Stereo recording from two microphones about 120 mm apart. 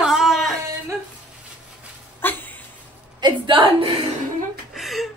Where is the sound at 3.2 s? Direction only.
40° right (ahead or behind).